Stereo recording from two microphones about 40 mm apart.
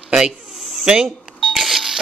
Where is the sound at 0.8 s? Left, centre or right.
Right.